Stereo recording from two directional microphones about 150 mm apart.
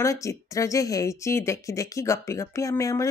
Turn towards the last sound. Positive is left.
turn(degrees=20)  # may be behind; listen again after turning